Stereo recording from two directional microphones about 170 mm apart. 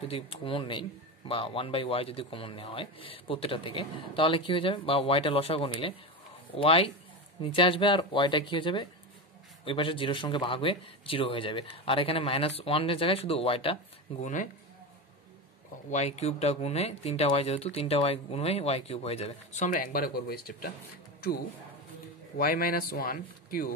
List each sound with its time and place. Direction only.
0.1 s speech: 35° left (ahead or behind)
14.2 s speech: 50° left (ahead or behind)
15.9 s speech: 40° left (ahead or behind); by 20.7 s 65° left (ahead or behind)
22.4 s speech: 60° left (ahead or behind)